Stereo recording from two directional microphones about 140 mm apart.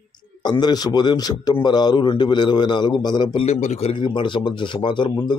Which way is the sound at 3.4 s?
50° left (ahead or behind).